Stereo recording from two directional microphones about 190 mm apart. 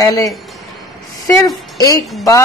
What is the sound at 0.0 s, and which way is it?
A man's voice, 15° left (ahead or behind).